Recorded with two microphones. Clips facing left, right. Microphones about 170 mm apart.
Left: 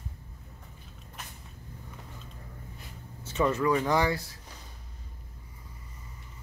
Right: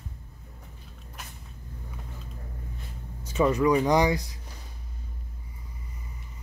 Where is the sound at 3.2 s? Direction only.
15° right (ahead or behind).